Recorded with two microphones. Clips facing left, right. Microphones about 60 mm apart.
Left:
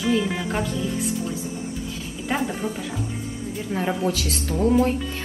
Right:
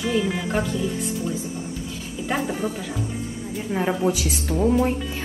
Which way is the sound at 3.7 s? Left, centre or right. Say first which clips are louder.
Right 2 dB; centre.